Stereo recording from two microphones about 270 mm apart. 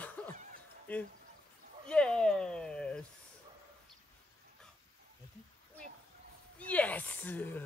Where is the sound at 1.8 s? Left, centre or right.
Centre.